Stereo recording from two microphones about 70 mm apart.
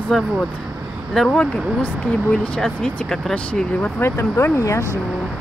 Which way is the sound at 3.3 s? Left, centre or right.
Centre.